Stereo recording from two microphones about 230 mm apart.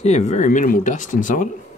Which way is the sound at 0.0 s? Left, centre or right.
Left.